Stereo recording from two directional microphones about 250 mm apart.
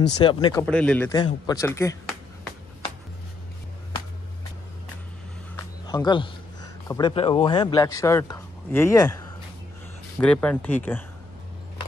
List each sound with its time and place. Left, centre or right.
0.2 s speech: centre
0.7 s a man's voice: centre
5.9 s a man's voice: centre